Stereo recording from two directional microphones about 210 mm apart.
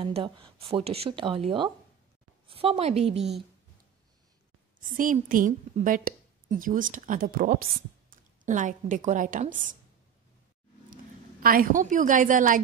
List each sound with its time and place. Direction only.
0.0 s a woman's voice: 25° right (ahead or behind)
4.8 s a woman's voice: 40° right (ahead or behind)
11.4 s a woman's voice: 45° right (ahead or behind)